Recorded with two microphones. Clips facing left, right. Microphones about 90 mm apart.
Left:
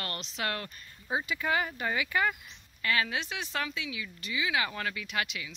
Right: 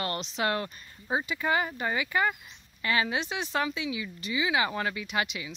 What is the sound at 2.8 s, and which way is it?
A woman's voice, 20° right (ahead or behind).